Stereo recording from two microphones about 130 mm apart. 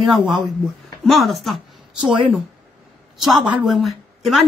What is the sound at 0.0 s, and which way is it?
Speech, 5° right (ahead or behind).